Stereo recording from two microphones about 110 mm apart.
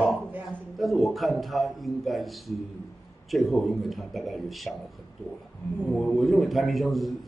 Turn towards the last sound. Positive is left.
turn(degrees=0)  # may be behind; listen again after turning